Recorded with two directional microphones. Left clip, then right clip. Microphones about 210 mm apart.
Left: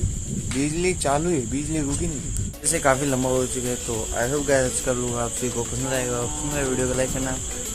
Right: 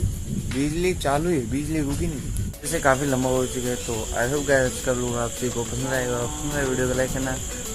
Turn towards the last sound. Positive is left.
turn(degrees=0)  # may be behind; listen again after turning